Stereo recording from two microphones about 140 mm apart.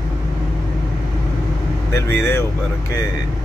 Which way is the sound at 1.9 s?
15° left (ahead or behind).